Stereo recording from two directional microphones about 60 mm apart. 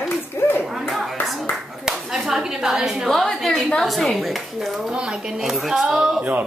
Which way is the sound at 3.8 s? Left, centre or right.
Centre.